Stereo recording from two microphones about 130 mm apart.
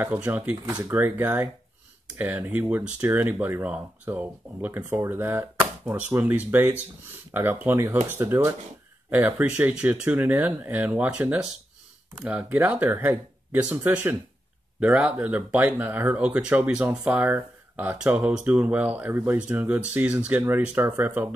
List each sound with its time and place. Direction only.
0.0 s speech: 15° right (ahead or behind)